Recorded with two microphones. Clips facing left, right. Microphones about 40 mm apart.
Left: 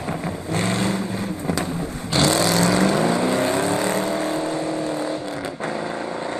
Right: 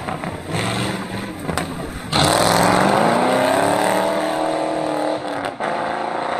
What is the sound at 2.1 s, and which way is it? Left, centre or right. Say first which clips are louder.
Vehicle: right 3 dB; right.